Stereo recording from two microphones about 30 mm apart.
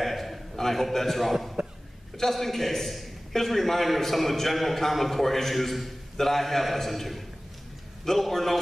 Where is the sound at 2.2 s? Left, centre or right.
Centre.